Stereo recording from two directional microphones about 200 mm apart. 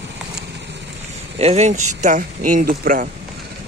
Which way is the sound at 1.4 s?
30° right (ahead or behind).